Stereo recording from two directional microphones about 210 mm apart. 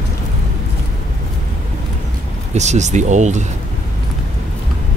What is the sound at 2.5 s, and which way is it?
Speech, 35° right (ahead or behind).